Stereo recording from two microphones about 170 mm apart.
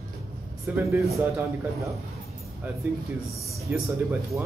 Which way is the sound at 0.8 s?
15° right (ahead or behind).